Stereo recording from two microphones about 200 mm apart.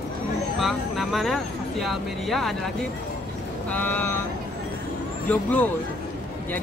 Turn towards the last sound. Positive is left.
turn(degrees=10)  # may be behind; listen again after turning